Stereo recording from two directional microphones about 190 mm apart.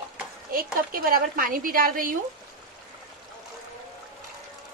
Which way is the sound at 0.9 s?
50° right (ahead or behind).